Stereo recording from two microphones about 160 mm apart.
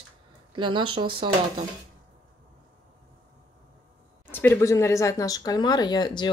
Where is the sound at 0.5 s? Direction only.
30° right (ahead or behind).